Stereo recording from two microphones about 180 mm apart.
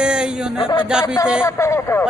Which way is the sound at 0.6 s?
25° left (ahead or behind).